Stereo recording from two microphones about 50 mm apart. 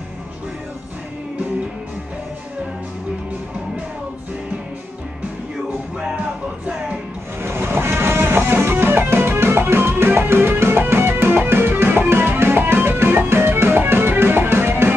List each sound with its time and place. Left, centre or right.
7.4 s music: right